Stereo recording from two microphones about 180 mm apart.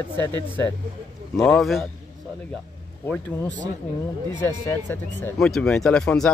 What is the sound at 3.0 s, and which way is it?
Speech, 10° left (ahead or behind).